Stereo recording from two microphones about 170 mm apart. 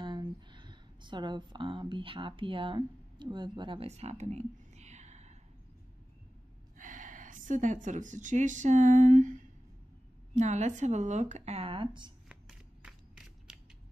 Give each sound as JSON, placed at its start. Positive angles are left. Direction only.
{"t": 0.0, "sound": "speech", "side_deg": -25}
{"t": 6.8, "sound": "a woman's voice", "side_deg": -50}
{"t": 12.3, "sound": "scissors", "side_deg": -5}